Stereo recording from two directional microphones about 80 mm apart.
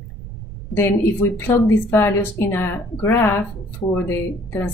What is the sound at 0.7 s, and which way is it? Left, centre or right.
A woman's voice, left.